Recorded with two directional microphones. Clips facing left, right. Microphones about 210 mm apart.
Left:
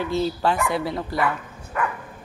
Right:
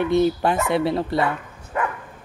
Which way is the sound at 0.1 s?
20° right (ahead or behind).